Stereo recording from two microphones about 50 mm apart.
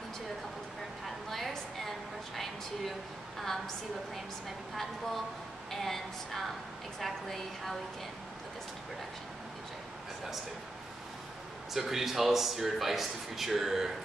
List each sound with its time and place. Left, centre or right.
1.3 s a sound: centre
4.7 s speech: centre
11.7 s speech: centre